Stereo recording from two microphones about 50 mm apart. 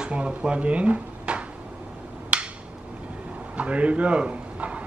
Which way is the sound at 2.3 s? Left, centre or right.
Right.